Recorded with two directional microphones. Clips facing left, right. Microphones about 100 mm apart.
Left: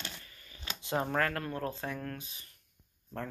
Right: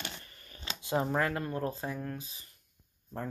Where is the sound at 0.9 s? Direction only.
15° right (ahead or behind).